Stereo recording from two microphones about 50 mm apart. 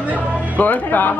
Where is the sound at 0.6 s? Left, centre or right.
Left.